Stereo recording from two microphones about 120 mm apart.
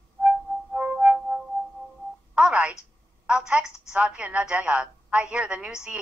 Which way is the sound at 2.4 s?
5° right (ahead or behind).